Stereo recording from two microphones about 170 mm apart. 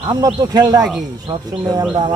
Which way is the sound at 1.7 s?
25° right (ahead or behind).